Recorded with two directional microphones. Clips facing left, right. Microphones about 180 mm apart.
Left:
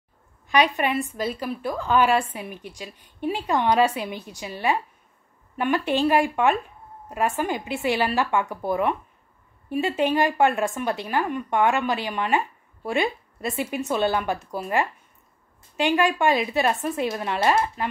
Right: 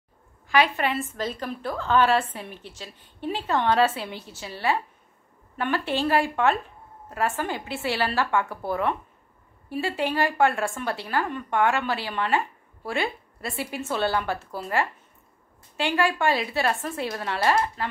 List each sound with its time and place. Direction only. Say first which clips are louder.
0.5 s a woman's voice: left 1 dB; 20° left (ahead or behind)